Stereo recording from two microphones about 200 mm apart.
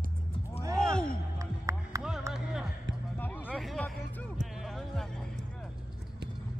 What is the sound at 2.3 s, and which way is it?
Music, 5° right (ahead or behind).